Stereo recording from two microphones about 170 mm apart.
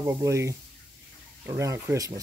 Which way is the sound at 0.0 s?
15° right (ahead or behind).